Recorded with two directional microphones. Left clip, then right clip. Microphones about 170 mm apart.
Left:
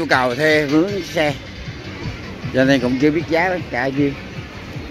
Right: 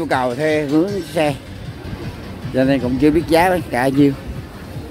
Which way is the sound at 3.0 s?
35° right (ahead or behind).